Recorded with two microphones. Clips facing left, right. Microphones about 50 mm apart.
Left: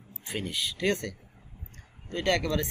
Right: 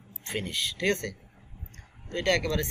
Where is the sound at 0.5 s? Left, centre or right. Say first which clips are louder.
Even; centre.